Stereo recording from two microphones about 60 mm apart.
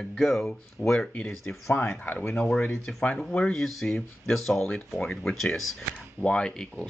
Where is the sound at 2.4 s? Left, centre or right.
Centre.